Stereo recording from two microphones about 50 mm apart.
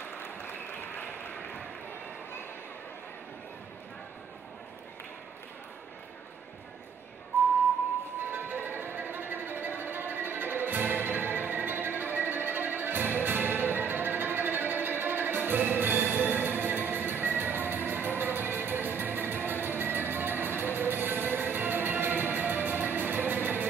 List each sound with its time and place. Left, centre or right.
0.2 s applause: left
7.3 s whistling: left
8.3 s music: right